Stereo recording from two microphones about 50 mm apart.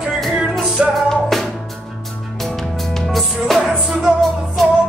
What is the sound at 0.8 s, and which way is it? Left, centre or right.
Music, centre.